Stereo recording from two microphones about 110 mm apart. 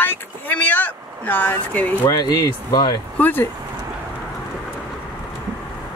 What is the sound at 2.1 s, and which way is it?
Speech, 40° left (ahead or behind).